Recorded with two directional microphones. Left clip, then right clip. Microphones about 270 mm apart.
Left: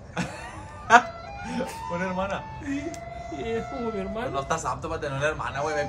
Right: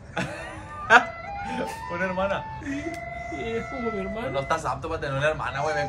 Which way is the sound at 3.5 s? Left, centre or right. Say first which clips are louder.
Even; left.